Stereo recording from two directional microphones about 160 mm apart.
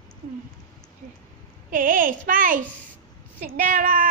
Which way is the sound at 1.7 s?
60° right (ahead or behind).